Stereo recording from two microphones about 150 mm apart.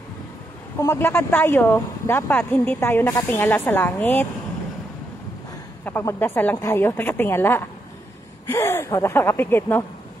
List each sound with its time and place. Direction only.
0.7 s speech: 20° left (ahead or behind)
5.9 s speech: 15° left (ahead or behind)